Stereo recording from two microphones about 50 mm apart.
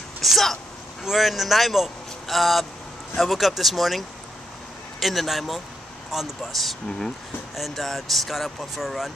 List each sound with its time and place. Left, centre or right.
0.2 s speech: centre
5.0 s speech: centre